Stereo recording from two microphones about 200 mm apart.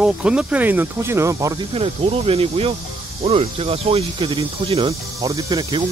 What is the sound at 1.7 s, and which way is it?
Speech, 30° right (ahead or behind).